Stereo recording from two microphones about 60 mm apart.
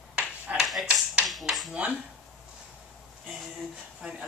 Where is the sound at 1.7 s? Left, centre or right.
Right.